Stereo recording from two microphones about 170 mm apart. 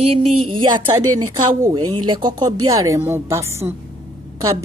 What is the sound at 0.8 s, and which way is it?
Speech, 20° right (ahead or behind).